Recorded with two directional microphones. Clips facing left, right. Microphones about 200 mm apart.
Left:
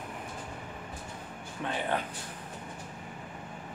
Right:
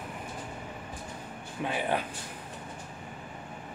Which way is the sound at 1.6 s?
10° right (ahead or behind).